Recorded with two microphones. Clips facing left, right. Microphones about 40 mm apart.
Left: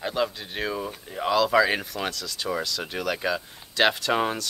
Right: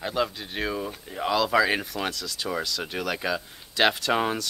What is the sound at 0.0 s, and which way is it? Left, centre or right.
Speech, centre.